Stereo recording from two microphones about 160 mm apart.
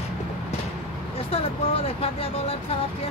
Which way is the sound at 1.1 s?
35° left (ahead or behind).